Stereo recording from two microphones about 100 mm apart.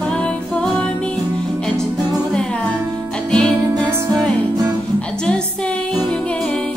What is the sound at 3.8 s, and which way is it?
Music, 25° right (ahead or behind).